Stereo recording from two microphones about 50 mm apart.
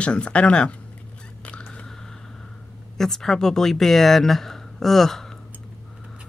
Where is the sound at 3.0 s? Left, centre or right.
Centre.